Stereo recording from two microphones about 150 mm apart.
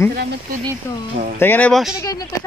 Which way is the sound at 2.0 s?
25° left (ahead or behind).